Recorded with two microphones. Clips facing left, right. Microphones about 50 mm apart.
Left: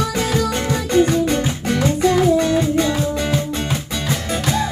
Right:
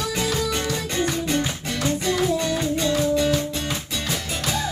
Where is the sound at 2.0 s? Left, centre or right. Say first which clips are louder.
Left 9 dB; left.